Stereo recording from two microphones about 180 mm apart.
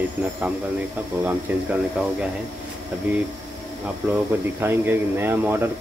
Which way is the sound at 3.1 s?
10° right (ahead or behind).